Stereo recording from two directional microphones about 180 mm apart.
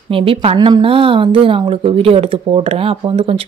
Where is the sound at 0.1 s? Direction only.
30° right (ahead or behind).